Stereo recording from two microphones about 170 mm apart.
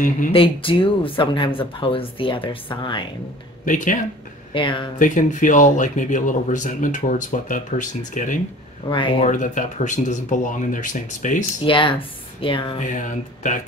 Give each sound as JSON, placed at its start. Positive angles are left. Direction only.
{"t": 0.3, "sound": "speech", "side_deg": 30}
{"t": 3.6, "sound": "speech", "side_deg": 50}
{"t": 4.6, "sound": "speech", "side_deg": 30}
{"t": 4.9, "sound": "speech", "side_deg": 50}
{"t": 8.8, "sound": "speech", "side_deg": 30}
{"t": 9.3, "sound": "speech", "side_deg": 50}
{"t": 11.6, "sound": "speech", "side_deg": 30}
{"t": 12.7, "sound": "speech", "side_deg": 50}